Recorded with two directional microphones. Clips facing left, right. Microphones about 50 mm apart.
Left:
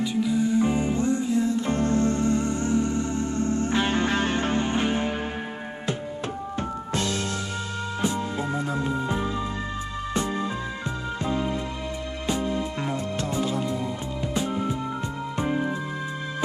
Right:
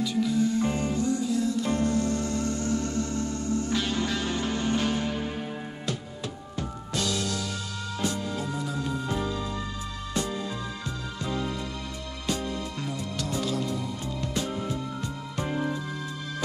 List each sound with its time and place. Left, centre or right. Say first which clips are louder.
0.1 s music: left 2 dB; centre
0.9 s music: left 3 dB; left
6.9 s music: even; left
12.8 s music: left 5 dB; left